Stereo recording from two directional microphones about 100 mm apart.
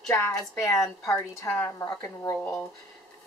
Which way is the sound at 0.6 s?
30° left (ahead or behind).